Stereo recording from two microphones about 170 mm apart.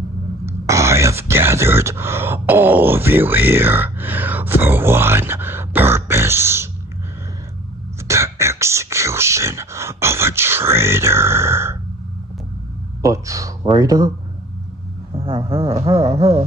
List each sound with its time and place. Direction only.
0.5 s speech: 15° right (ahead or behind)
8.1 s speech: 15° right (ahead or behind)
13.0 s speech: 20° right (ahead or behind)
15.1 s a sound: 30° right (ahead or behind)